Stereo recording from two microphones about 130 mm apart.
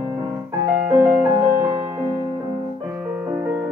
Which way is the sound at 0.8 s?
20° right (ahead or behind).